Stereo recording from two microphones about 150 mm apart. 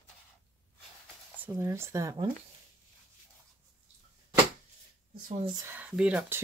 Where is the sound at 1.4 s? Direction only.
15° right (ahead or behind).